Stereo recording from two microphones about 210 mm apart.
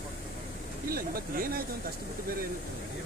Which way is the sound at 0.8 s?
45° right (ahead or behind).